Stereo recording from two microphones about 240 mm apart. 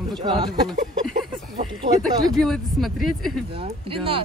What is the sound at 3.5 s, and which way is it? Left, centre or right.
Speech, right.